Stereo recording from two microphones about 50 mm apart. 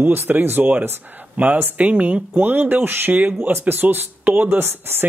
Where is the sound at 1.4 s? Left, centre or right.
Right.